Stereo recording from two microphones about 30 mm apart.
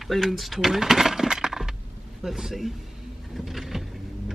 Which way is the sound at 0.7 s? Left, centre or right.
Centre.